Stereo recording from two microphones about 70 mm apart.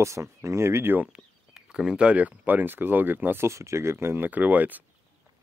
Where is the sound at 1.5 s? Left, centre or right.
Centre; by 3.5 s right.